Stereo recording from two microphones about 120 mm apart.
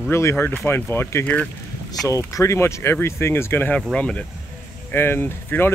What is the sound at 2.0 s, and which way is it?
Speech, 25° left (ahead or behind).